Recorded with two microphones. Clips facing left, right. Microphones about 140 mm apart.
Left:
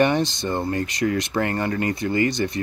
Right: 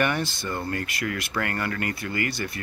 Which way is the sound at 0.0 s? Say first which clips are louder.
Left 6 dB; 20° left (ahead or behind).